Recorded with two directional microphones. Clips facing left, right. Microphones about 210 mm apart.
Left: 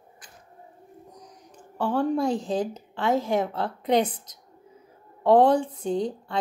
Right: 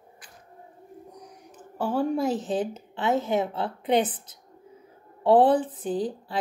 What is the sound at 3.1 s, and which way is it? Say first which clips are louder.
Speech: left 1 dB; 25° right (ahead or behind).